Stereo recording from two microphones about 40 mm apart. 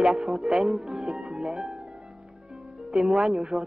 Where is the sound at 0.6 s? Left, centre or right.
Centre.